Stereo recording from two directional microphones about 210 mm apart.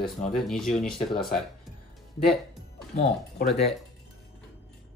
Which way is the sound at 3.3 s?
50° left (ahead or behind).